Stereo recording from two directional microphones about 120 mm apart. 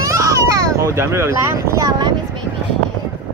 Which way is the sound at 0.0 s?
25° right (ahead or behind).